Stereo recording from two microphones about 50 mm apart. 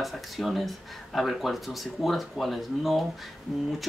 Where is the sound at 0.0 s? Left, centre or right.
Centre.